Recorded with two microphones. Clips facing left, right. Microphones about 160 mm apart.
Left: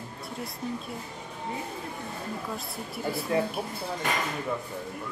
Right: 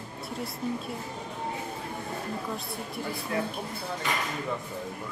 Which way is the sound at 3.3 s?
30° left (ahead or behind).